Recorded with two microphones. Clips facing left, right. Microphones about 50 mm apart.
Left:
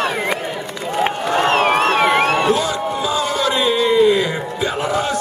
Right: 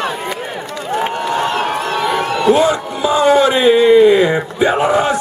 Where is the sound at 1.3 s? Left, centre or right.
Left.